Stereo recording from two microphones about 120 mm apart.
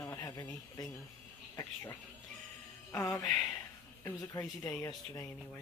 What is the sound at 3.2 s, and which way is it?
Speech, 5° left (ahead or behind).